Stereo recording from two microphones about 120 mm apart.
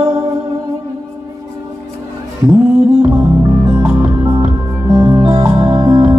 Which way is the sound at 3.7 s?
35° right (ahead or behind).